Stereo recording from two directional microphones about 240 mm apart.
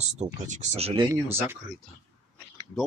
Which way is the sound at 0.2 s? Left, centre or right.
Right.